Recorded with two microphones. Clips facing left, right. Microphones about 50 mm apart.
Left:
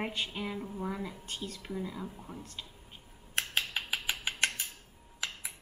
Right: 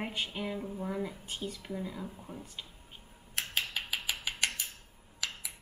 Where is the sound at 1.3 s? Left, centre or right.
Centre.